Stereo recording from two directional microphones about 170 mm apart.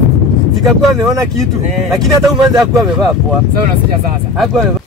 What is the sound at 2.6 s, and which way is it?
Speech, centre (ahead or behind).